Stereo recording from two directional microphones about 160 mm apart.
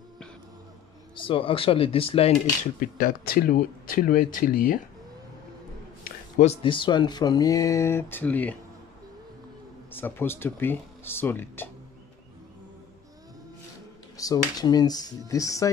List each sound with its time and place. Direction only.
1.1 s speech: 35° left (ahead or behind)
2.8 s speech: 65° left (ahead or behind)
6.4 s speech: 35° left (ahead or behind); by 8.5 s 10° left (ahead or behind)
9.8 s speech: 15° left (ahead or behind)
14.1 s speech: 20° left (ahead or behind)